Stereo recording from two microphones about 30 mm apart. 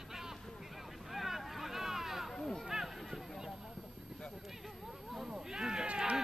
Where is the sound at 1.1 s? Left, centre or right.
Centre.